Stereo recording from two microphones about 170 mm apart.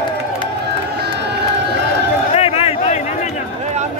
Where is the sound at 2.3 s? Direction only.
35° left (ahead or behind).